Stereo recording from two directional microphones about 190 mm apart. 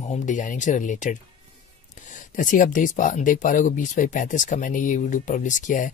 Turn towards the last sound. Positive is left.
turn(degrees=40)  # may be behind; listen again after turning